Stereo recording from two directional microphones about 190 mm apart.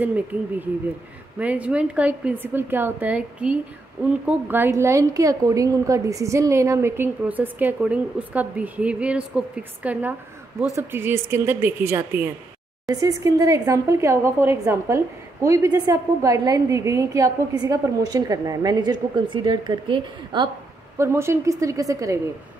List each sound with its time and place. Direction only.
0.0 s a woman's voice: 10° right (ahead or behind)